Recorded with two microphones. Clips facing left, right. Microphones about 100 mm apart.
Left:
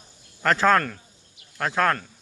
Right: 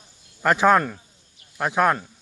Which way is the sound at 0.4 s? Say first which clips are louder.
Right 2 dB; 15° right (ahead or behind).